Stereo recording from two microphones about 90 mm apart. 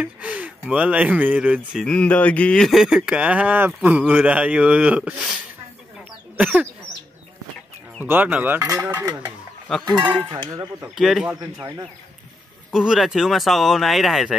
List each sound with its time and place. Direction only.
0.0 s speech: 15° right (ahead or behind)
1.9 s speech: 15° left (ahead or behind)
2.7 s speech: 5° right (ahead or behind)
8.0 s speech: 20° right (ahead or behind)
8.5 s speech: 35° right (ahead or behind)
9.8 s speech: 55° right (ahead or behind)
11.0 s speech: 5° right (ahead or behind)
12.7 s speech: 5° right (ahead or behind)